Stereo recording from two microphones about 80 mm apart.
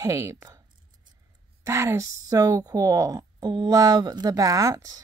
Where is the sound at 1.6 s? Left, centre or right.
Right.